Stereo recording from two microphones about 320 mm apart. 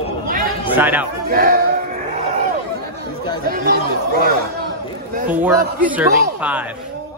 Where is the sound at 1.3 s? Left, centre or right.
Right.